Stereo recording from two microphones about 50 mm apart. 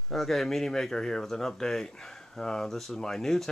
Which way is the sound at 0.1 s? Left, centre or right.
Centre.